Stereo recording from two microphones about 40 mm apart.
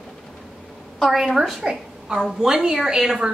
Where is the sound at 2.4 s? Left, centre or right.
Centre.